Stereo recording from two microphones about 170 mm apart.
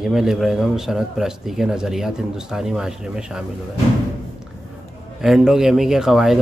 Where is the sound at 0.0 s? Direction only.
Centre (ahead or behind).